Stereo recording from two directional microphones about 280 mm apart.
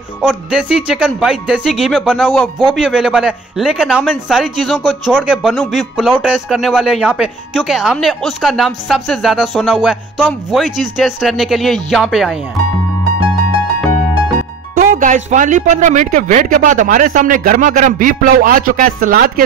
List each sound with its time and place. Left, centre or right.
0.2 s speech: centre
14.8 s speech: right